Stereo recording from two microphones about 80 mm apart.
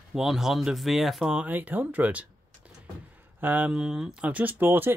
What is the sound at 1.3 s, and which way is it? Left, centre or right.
Speech, centre.